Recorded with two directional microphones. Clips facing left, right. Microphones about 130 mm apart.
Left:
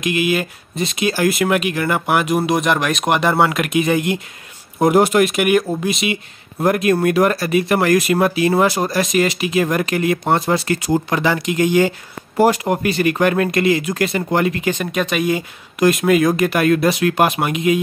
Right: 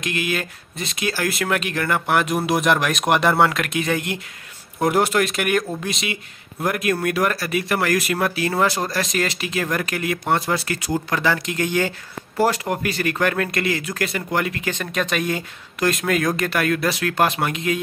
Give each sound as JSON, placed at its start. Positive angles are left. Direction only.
{"t": 0.0, "sound": "speech", "side_deg": 10}
{"t": 3.5, "sound": "speech", "side_deg": 15}
{"t": 6.6, "sound": "speech", "side_deg": 30}
{"t": 16.5, "sound": "speech", "side_deg": 20}